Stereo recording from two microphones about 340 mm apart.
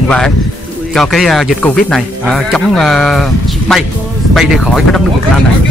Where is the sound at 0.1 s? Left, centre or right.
Centre.